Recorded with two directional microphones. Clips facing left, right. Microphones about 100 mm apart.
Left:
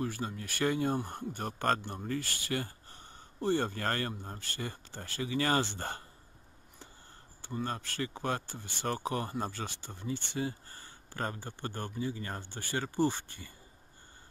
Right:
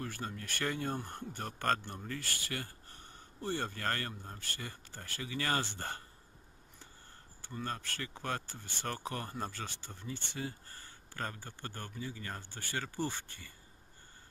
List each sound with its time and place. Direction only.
0.0 s speech: 10° left (ahead or behind); by 6.0 s 25° left (ahead or behind)
7.4 s speech: 20° left (ahead or behind)